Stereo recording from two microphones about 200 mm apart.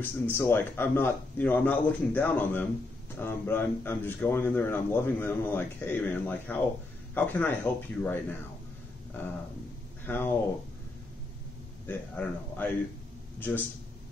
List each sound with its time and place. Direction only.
0.3 s speech: 10° left (ahead or behind)
10.0 s speech: 10° left (ahead or behind)
11.9 s speech: 10° left (ahead or behind)